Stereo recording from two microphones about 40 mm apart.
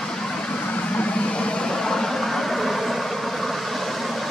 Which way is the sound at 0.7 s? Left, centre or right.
Left.